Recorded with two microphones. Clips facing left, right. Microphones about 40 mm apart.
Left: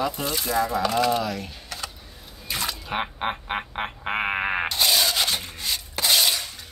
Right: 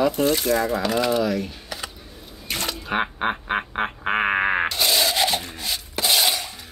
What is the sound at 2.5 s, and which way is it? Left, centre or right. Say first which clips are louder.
Drip: right 1 dB; right.